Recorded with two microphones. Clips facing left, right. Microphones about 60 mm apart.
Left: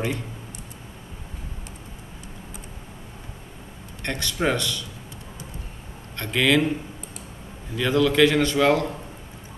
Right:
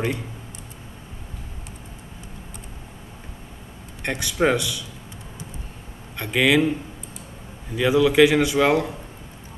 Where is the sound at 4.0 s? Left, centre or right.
Centre.